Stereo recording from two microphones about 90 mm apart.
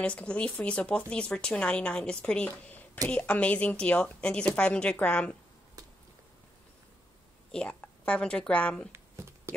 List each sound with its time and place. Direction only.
0.0 s speech: 15° left (ahead or behind)
7.5 s speech: 15° left (ahead or behind)
8.9 s a sound: 30° right (ahead or behind)